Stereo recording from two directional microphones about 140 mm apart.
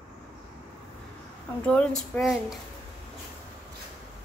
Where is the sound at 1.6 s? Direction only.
10° left (ahead or behind).